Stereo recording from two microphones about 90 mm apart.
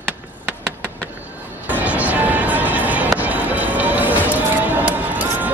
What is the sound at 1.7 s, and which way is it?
Music, 15° right (ahead or behind).